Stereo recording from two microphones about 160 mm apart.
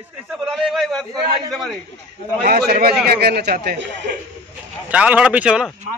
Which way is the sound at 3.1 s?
80° right.